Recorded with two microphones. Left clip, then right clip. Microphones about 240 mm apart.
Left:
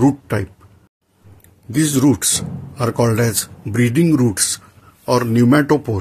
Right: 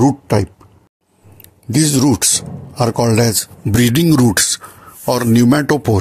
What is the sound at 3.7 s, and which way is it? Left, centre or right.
Speech, right.